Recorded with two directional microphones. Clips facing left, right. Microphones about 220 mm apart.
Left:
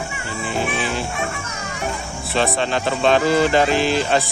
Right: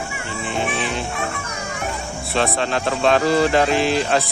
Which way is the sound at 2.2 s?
Centre (ahead or behind).